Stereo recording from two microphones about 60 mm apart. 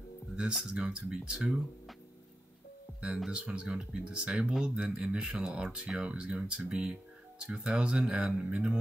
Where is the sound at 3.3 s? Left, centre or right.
Centre.